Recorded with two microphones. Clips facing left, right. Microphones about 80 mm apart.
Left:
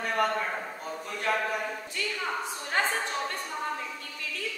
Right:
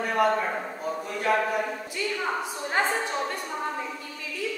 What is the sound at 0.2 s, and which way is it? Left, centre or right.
Speech, centre.